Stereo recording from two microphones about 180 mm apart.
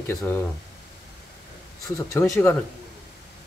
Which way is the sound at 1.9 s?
15° left (ahead or behind).